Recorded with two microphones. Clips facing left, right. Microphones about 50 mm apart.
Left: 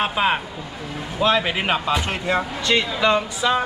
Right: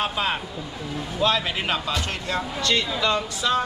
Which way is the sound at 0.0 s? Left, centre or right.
Left.